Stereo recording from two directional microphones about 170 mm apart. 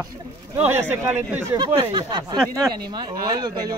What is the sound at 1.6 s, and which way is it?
A man's voice, 30° right (ahead or behind).